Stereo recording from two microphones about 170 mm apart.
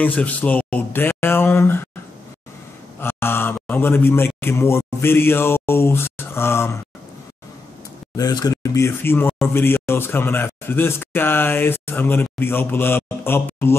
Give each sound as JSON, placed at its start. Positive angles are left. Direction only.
{"t": 0.0, "sound": "speech", "side_deg": 10}
{"t": 3.0, "sound": "a man's voice", "side_deg": 15}
{"t": 8.2, "sound": "speech", "side_deg": 20}